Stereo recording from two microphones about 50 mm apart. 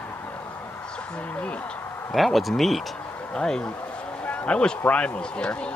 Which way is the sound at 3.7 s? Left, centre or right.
Left.